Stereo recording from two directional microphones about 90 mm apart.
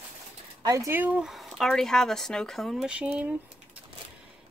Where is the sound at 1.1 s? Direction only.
Centre (ahead or behind).